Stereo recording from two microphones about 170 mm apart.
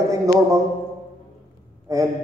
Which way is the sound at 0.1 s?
20° right (ahead or behind).